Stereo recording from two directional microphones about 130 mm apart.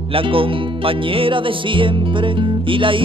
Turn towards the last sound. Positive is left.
turn(degrees=-40)  # may be behind; listen again after turning